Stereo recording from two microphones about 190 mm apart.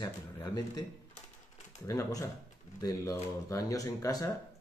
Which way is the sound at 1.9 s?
15° left (ahead or behind).